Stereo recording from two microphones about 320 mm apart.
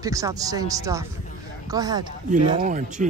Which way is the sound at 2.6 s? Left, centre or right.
Right.